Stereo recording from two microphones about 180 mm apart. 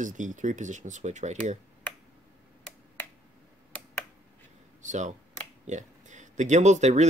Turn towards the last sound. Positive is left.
turn(degrees=-40)  # may be behind; listen again after turning